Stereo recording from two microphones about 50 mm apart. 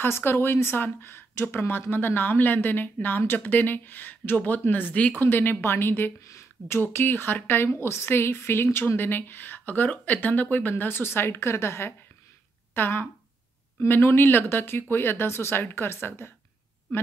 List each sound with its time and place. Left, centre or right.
0.0 s speech: left
6.2 s speech: left
6.8 s speech: left
10.7 s speech: left
11.3 s a woman's voice: left
12.7 s speech: left